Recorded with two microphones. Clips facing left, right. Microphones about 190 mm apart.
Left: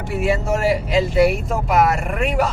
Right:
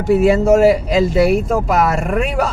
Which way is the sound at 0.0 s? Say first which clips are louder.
Right 9 dB; 45° right (ahead or behind).